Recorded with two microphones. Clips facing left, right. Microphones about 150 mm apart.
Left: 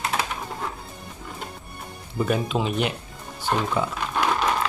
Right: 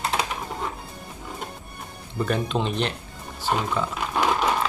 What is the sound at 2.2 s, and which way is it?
Speech, 5° left (ahead or behind).